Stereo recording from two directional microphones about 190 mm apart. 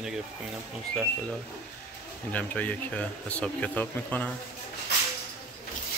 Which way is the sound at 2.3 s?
10° left (ahead or behind).